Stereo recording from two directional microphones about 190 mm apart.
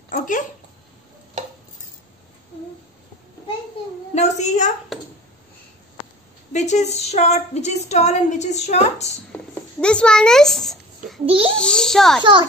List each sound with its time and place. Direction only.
0.1 s a sound: 45° left (ahead or behind)
4.1 s a woman's voice: 35° left (ahead or behind)
6.5 s a woman's voice: 35° left (ahead or behind)
9.8 s a child's voice: 5° left (ahead or behind)
11.2 s a child's voice: 30° right (ahead or behind)
11.5 s a child's voice: 5° left (ahead or behind)
12.2 s a child's voice: 25° right (ahead or behind)